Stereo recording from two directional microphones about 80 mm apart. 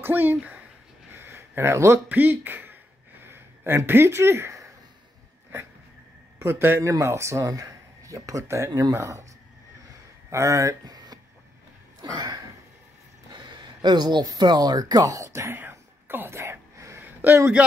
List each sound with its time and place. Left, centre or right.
0.0 s a man's voice: right
1.1 s a sound: right
2.0 s speech: right
6.4 s a man's voice: right
6.8 s speech: right
10.3 s speech: right
12.0 s a sound: right
17.0 s a sound: right
17.6 s a man's voice: centre